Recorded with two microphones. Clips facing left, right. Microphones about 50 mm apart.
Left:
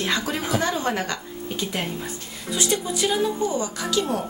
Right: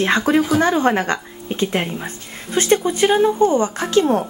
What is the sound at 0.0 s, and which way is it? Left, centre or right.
A woman's voice, right.